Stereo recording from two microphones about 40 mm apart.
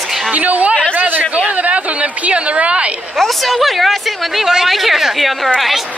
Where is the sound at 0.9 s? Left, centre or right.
Right.